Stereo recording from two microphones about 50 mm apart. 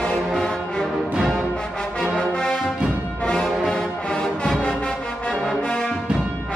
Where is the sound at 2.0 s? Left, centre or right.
Centre.